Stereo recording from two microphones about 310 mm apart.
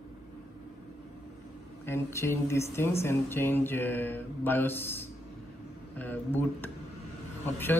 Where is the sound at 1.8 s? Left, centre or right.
Centre.